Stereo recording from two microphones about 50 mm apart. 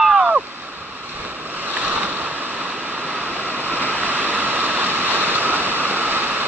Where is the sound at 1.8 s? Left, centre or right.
Right.